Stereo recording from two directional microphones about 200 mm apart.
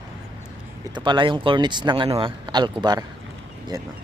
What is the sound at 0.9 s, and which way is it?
Speech, 25° right (ahead or behind).